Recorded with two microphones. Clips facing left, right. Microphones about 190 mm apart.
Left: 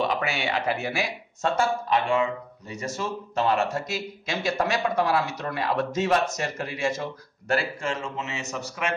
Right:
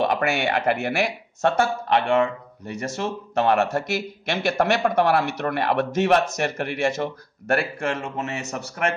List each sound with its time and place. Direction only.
0.0 s a man's voice: 55° right (ahead or behind)